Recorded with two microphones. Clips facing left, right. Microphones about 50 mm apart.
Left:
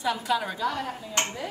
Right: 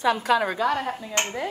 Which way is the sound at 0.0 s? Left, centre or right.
Right.